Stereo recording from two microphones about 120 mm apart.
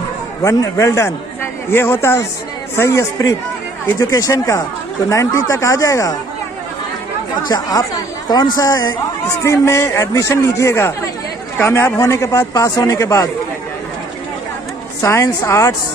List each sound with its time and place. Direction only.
0.4 s a man's voice: 25° left (ahead or behind)
7.4 s a man's voice: 35° left (ahead or behind)
15.0 s a man's voice: 25° left (ahead or behind)